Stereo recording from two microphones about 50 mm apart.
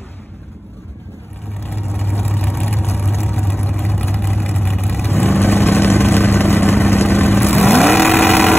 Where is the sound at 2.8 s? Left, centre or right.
Left.